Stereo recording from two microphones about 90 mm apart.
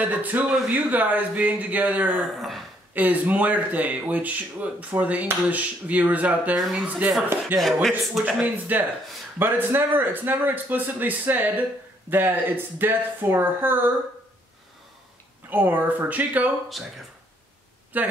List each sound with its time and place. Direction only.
0.0 s a man's voice: 20° right (ahead or behind)
2.3 s speech: centre (ahead or behind)
2.9 s a man's voice: 20° right (ahead or behind)
15.5 s a man's voice: 20° right (ahead or behind)
16.8 s speech: centre (ahead or behind)
17.9 s a man's voice: 20° right (ahead or behind)